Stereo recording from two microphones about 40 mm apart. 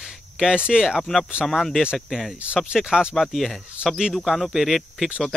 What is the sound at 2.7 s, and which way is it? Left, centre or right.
Speech, centre.